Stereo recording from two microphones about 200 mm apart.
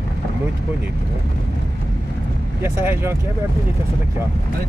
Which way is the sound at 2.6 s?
10° right (ahead or behind).